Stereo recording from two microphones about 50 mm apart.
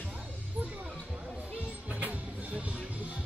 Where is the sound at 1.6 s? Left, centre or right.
Right.